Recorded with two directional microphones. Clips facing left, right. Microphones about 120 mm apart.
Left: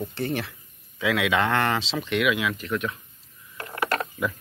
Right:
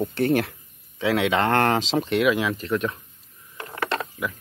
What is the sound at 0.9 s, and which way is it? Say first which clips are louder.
Speech: right 2 dB; 30° right (ahead or behind).